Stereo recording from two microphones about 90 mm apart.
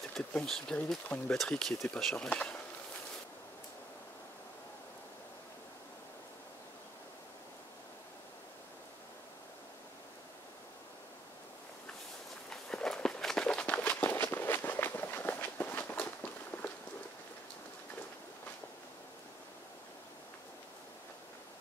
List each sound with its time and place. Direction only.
0.3 s speech: 10° left (ahead or behind)
1.0 s speech: 20° left (ahead or behind)
1.3 s speech: 5° left (ahead or behind)
2.1 s speech: 15° left (ahead or behind)
12.4 s walk: 5° left (ahead or behind)